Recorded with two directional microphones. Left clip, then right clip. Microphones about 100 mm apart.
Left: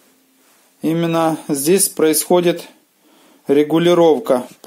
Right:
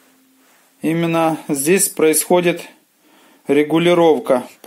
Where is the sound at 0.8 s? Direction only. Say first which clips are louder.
Even; 20° left (ahead or behind).